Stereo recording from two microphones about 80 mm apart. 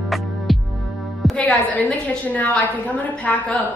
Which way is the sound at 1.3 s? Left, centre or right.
Centre.